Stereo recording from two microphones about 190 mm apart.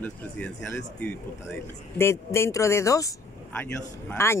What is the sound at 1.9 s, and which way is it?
Speech, 15° left (ahead or behind).